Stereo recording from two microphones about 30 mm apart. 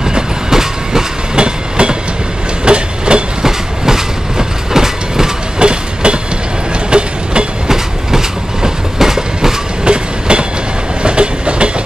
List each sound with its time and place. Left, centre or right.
0.0 s train: centre
1.3 s train: right
3.4 s train: centre
5.6 s train: right
7.6 s train: centre
9.8 s train: right